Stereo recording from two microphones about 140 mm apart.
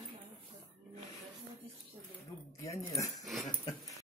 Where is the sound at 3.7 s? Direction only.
25° left (ahead or behind).